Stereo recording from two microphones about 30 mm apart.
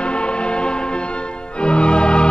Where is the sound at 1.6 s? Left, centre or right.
Left.